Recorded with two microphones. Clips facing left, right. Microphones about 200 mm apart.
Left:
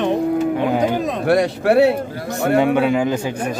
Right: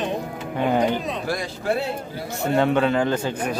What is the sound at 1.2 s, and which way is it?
A man's voice, 70° left (ahead or behind).